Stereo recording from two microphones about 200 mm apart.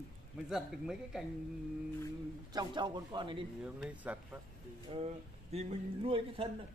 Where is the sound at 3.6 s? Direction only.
5° right (ahead or behind).